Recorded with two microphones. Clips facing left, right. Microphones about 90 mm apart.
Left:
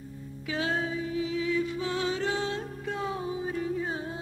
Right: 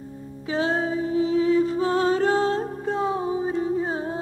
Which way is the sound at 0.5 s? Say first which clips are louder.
Right 6 dB; 30° right (ahead or behind).